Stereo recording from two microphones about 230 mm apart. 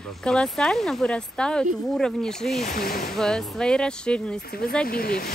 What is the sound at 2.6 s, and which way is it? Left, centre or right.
Speech, left.